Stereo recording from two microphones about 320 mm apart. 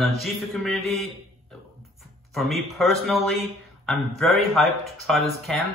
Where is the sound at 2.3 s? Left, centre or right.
Centre.